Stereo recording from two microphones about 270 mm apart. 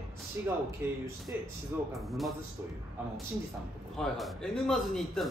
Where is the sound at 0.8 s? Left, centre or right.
Centre.